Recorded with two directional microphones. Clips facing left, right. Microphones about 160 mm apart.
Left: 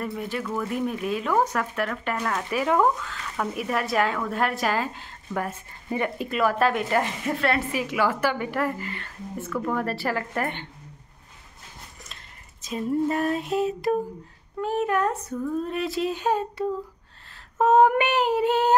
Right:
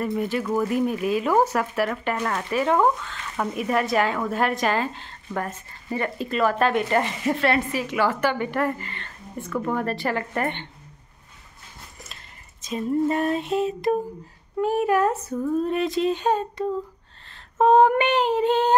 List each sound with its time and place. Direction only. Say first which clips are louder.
0.0 s a woman's voice: right 5 dB; centre (ahead or behind)
2.5 s a woman's voice: right 2 dB; 5° left (ahead or behind)
7.7 s a woman's voice: right 1 dB; 10° left (ahead or behind)
9.5 s speech: right 2 dB; 10° right (ahead or behind)
9.8 s a woman's voice: right 2 dB; 5° left (ahead or behind)
12.6 s a woman's voice: right 2 dB; centre (ahead or behind)
14.6 s a woman's voice: right 3 dB; 10° right (ahead or behind); by 16.6 s 10° left (ahead or behind)
17.3 s female singing: right 3 dB; 5° left (ahead or behind)